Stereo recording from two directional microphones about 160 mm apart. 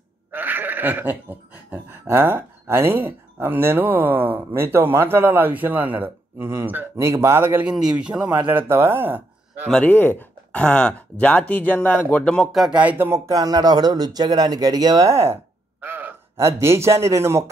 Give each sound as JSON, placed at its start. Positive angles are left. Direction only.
{"t": 0.3, "sound": "a sound", "side_deg": -10}
{"t": 4.6, "sound": "a man's voice", "side_deg": -15}
{"t": 9.7, "sound": "a man's voice", "side_deg": 5}